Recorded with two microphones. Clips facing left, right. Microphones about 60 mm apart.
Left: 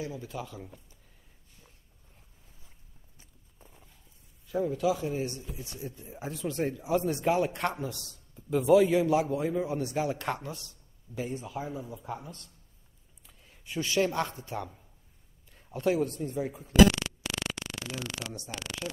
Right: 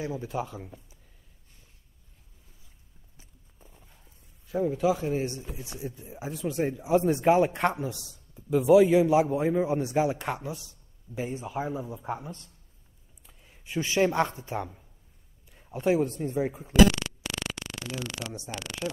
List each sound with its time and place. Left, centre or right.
0.0 s speech: right
3.5 s horse: centre
4.6 s a man's voice: centre
4.8 s speech: right
5.9 s a man's voice: centre
6.8 s a man's voice: right
11.1 s speech: right
13.3 s speech: centre
15.5 s a sound: centre
15.8 s speech: right
16.7 s a sound: centre
18.5 s speech: centre